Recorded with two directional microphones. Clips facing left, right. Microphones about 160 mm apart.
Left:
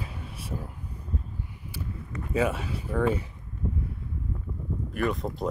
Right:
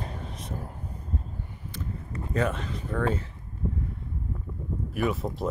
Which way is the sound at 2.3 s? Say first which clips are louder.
Left 2 dB; 10° left (ahead or behind).